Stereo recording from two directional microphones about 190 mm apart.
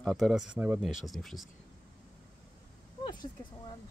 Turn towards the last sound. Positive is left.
turn(degrees=20)  # may be behind; listen again after turning